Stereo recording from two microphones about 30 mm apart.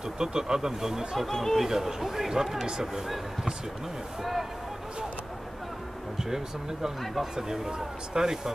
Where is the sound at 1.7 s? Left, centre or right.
Centre.